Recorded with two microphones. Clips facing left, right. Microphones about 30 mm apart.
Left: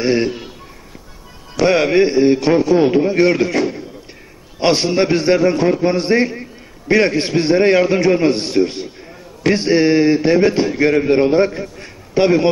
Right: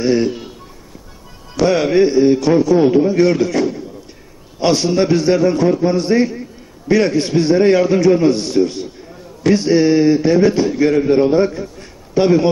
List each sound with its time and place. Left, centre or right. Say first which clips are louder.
0.0 s a man's voice: right 1 dB; left
1.7 s a man's voice: even; left